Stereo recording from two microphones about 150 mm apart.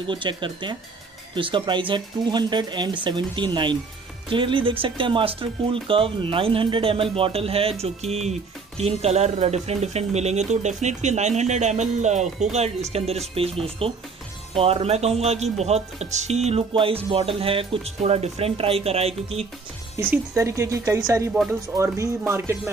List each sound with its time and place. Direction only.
0.0 s speech: 35° right (ahead or behind)
20.0 s speech: 15° right (ahead or behind)